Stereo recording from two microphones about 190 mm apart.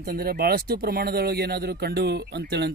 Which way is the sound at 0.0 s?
50° right (ahead or behind).